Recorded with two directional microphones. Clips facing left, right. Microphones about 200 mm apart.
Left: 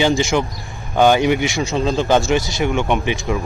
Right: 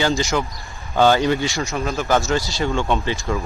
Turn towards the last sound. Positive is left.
turn(degrees=15)  # may be behind; listen again after turning